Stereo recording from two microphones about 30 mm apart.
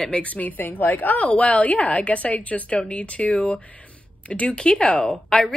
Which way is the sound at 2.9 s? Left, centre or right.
Left.